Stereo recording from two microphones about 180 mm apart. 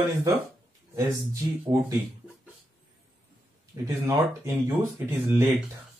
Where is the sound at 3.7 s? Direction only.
15° right (ahead or behind).